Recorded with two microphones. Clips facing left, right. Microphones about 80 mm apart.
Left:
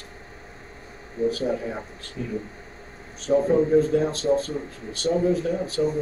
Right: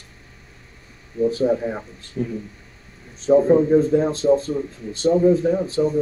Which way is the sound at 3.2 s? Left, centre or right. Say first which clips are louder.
Right 5 dB; right.